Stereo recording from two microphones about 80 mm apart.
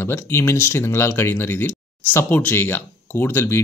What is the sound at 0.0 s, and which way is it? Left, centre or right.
Speech, left.